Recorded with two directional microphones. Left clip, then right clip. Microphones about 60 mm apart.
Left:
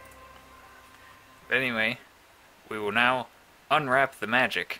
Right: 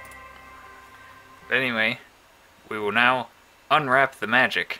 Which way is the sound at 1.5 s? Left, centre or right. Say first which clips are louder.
Right 3 dB; left.